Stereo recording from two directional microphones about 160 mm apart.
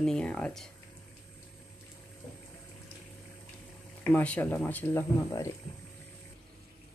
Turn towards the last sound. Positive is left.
turn(degrees=20)  # may be behind; listen again after turning